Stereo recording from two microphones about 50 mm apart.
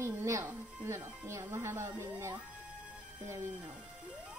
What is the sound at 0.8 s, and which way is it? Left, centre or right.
Speech, right.